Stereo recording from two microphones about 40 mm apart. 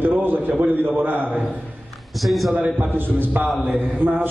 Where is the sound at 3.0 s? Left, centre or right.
Right.